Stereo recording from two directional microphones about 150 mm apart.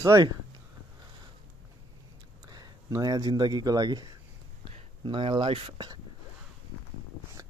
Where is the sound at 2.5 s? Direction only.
25° right (ahead or behind).